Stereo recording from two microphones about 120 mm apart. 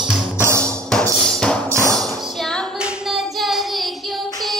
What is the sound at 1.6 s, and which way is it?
Music, 25° right (ahead or behind).